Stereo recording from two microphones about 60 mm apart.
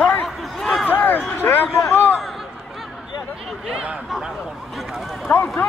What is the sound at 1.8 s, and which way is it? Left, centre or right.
Speech, left.